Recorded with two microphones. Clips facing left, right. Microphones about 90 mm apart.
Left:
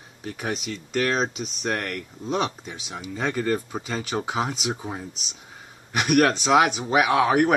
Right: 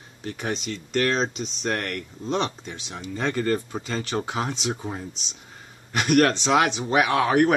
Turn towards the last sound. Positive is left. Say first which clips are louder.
# even
turn(degrees=5)  # may be behind; listen again after turning